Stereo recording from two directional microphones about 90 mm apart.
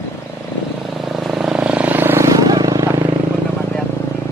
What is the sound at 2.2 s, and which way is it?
Vehicle, 40° right (ahead or behind).